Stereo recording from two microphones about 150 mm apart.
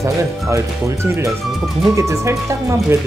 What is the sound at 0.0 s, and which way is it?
Speech, 20° right (ahead or behind).